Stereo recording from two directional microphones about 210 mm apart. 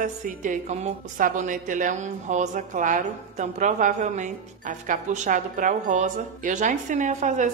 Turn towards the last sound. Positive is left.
turn(degrees=-35)  # may be behind; listen again after turning